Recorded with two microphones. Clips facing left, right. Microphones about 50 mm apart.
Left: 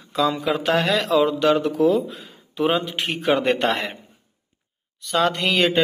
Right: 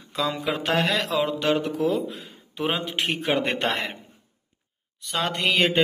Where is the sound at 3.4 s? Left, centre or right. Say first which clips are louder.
Left 5 dB; left.